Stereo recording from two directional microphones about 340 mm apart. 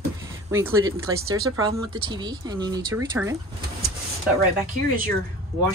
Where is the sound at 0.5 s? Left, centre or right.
Centre.